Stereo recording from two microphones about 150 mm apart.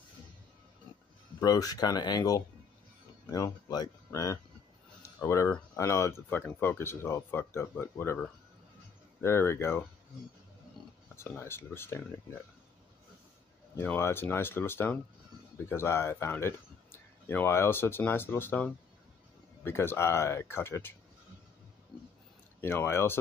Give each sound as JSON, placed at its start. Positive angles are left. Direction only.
{"t": 1.4, "sound": "speech", "side_deg": 25}
{"t": 9.2, "sound": "speech", "side_deg": 15}
{"t": 11.1, "sound": "speech", "side_deg": 15}
{"t": 13.7, "sound": "speech", "side_deg": 15}
{"t": 22.6, "sound": "speech", "side_deg": 15}